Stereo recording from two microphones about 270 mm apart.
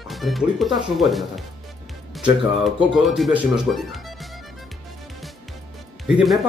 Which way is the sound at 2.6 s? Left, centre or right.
Centre.